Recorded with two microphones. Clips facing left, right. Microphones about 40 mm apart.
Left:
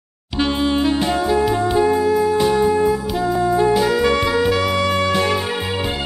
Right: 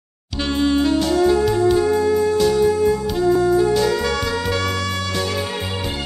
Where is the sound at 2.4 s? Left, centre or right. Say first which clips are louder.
Even; left.